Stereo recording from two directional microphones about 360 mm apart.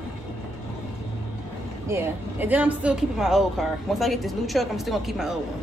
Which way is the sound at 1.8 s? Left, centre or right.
Centre.